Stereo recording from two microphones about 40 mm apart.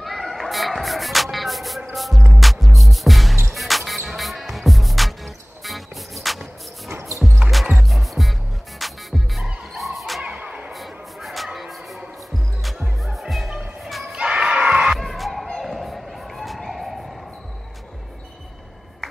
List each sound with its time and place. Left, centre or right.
0.0 s music: centre
7.7 s music: centre
10.2 s music: right
10.7 s music: centre
13.0 s music: centre
13.8 s crowd: centre
14.1 s crowd: right
15.0 s music: centre
15.6 s a sound: centre